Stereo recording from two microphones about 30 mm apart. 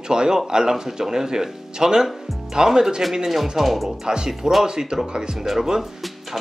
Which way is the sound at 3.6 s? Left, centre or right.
Centre.